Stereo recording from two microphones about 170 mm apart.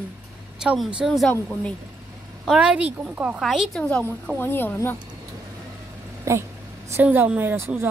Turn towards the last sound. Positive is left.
turn(degrees=-15)  # may be behind; listen again after turning